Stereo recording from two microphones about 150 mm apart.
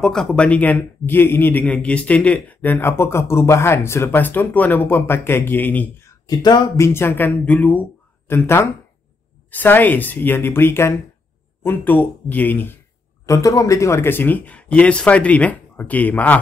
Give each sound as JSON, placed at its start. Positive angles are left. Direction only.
{"t": 0.0, "sound": "a man's voice", "side_deg": 5}
{"t": 6.9, "sound": "a man's voice", "side_deg": 15}